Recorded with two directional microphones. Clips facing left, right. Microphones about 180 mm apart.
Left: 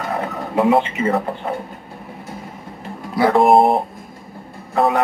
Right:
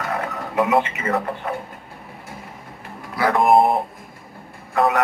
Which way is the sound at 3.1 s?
25° left (ahead or behind).